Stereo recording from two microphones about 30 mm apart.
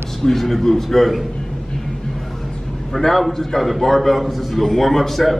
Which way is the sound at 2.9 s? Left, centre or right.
Centre.